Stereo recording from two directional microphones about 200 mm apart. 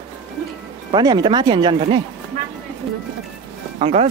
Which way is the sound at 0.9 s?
20° right (ahead or behind).